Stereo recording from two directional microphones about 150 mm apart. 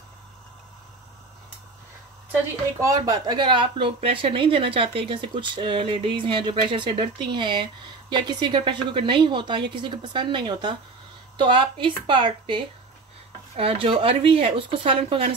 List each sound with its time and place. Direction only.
2.8 s speech: 25° right (ahead or behind); by 15.3 s 40° right (ahead or behind)